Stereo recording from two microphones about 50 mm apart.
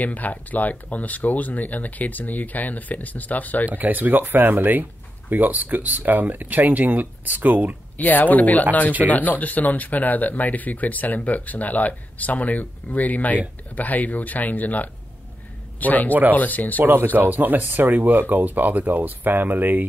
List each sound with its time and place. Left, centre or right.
0.0 s speech: left
3.6 s speech: right
8.0 s speech: left
16.1 s speech: right
16.3 s speech: left
16.8 s speech: right